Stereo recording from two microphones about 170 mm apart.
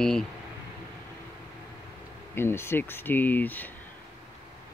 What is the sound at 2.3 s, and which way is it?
Speech, 15° left (ahead or behind).